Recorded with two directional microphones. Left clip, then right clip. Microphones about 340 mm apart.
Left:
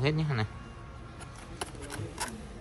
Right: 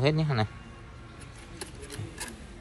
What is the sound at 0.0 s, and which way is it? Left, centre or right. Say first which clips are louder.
Speech: right 4 dB; centre.